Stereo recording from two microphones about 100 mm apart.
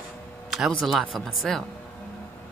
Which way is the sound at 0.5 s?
5° right (ahead or behind).